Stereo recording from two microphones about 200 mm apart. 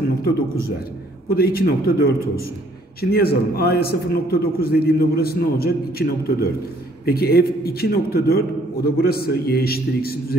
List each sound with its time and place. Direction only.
0.2 s a man's voice: 50° left (ahead or behind)